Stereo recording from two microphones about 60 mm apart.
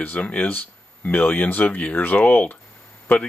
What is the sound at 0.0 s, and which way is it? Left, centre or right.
Speech, left.